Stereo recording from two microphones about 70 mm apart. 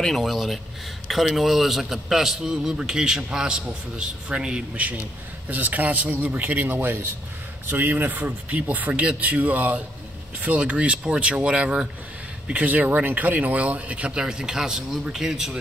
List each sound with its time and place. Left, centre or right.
0.0 s a man's voice: centre